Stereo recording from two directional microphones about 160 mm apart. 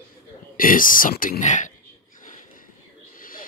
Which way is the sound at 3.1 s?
60° left (ahead or behind).